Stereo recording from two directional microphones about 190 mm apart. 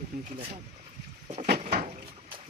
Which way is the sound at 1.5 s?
55° right (ahead or behind).